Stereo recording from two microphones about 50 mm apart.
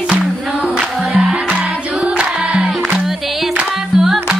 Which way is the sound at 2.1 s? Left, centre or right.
Right.